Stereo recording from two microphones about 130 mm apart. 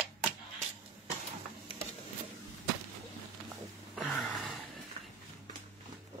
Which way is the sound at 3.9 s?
Centre (ahead or behind).